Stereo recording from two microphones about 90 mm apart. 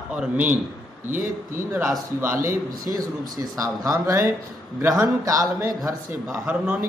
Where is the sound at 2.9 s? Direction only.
45° right (ahead or behind).